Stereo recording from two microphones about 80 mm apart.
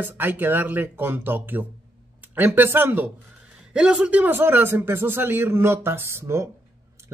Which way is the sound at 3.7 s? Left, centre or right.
Centre.